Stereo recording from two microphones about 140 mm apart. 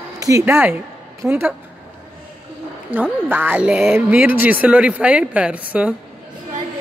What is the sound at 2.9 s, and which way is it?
A woman's voice, 10° right (ahead or behind).